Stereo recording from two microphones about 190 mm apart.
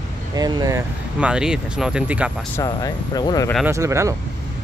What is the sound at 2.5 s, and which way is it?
Speech, 20° left (ahead or behind).